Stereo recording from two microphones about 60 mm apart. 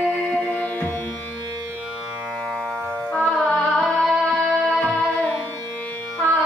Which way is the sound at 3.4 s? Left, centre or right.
Left.